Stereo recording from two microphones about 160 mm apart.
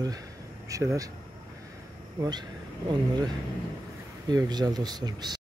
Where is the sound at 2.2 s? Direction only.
25° right (ahead or behind).